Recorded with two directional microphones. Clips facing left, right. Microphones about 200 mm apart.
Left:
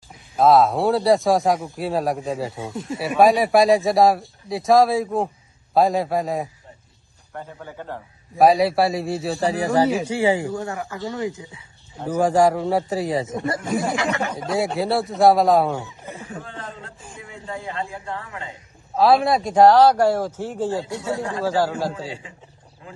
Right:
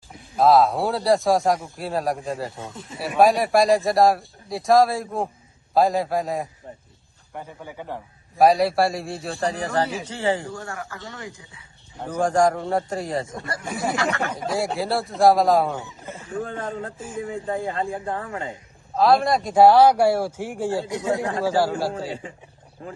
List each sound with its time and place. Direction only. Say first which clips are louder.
0.4 s speech: left 1 dB; centre (ahead or behind)
7.3 s a man's voice: left 1 dB; 15° right (ahead or behind)
8.4 s speech: left 1 dB; centre (ahead or behind)
10.4 s speech: left 6 dB; 20° left (ahead or behind)
12.0 s speech: left 3 dB; 10° left (ahead or behind)
13.3 s speech: left 7 dB; 20° left (ahead or behind)
14.3 s speech: left 2 dB; 5° right (ahead or behind)
15.8 s speech: left 1 dB; 15° left (ahead or behind)
16.4 s speech: right 6 dB; 50° right (ahead or behind)
18.9 s a man's voice: left 1 dB; centre (ahead or behind)
22.2 s speech: right 4 dB; 50° right (ahead or behind)